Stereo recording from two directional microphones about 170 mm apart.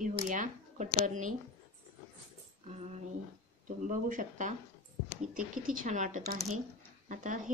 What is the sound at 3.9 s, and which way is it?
Speech, 50° right (ahead or behind).